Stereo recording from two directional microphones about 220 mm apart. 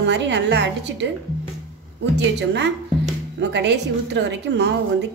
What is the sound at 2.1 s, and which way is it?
A woman's voice, 50° right (ahead or behind).